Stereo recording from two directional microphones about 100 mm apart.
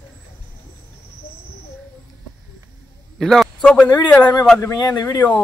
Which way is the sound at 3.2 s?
5° left (ahead or behind).